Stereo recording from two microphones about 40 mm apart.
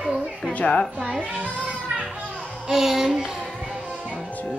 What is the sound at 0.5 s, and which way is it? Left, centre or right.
Speech, left.